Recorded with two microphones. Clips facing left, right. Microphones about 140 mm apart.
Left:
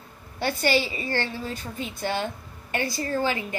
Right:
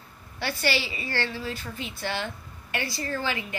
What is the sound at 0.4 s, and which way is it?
Speech, 45° left (ahead or behind).